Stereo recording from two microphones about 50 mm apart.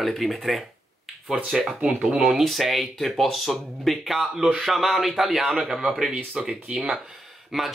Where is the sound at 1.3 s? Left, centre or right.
Centre.